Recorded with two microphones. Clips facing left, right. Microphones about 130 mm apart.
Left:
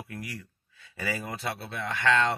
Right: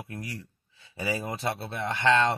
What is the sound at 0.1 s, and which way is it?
Speech, 25° right (ahead or behind).